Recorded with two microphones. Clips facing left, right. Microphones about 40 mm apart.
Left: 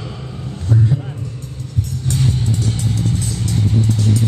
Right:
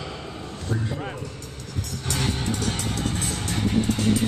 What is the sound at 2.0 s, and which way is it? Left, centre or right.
Music, right.